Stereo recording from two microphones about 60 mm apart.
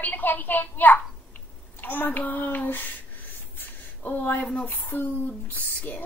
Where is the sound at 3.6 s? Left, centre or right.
Left.